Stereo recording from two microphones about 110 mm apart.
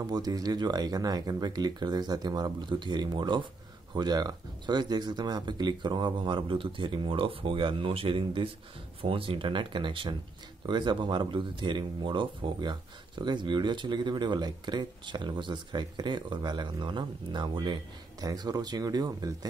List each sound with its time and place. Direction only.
0.0 s speech: 35° right (ahead or behind)